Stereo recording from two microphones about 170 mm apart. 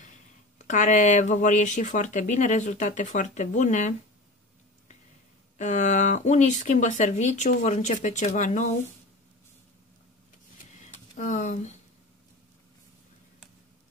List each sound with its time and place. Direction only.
0.6 s speech: 45° left (ahead or behind)
5.6 s speech: 45° left (ahead or behind)
10.9 s a sound: 45° left (ahead or behind)